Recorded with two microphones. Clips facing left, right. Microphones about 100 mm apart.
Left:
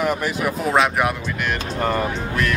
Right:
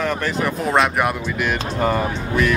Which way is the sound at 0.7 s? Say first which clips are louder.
Even; centre (ahead or behind).